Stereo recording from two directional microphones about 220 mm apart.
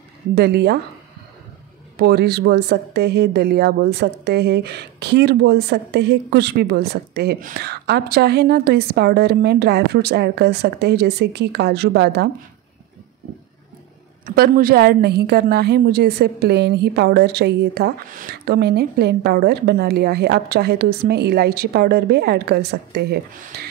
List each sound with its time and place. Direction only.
0.3 s speech: 45° right (ahead or behind)
2.0 s speech: 45° right (ahead or behind)
14.2 s speech: 40° right (ahead or behind)